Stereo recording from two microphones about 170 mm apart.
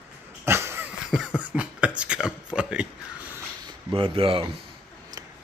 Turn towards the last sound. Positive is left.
turn(degrees=-30)  # may be behind; listen again after turning